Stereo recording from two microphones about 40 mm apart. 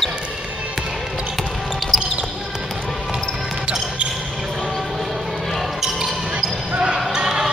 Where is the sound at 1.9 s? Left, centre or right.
Centre.